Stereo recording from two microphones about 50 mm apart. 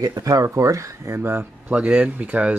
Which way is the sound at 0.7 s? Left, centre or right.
Right.